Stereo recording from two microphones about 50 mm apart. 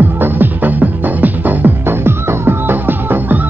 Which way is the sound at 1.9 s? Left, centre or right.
Right.